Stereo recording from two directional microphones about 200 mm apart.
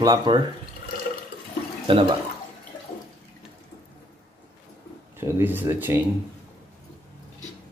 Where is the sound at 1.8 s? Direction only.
25° right (ahead or behind).